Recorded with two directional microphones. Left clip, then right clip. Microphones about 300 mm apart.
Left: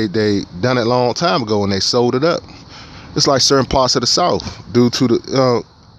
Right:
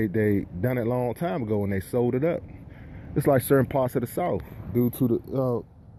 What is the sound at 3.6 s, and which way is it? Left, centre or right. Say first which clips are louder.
Speech: left 10 dB; centre.